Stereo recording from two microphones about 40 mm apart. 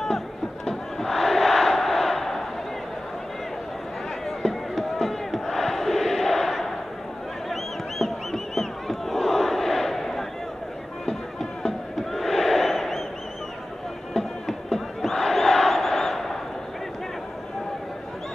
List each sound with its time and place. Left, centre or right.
0.7 s battle cry: centre
4.4 s crowd: centre
8.0 s battle cry: centre
11.1 s music: centre
12.1 s battle cry: centre
14.1 s crowd: centre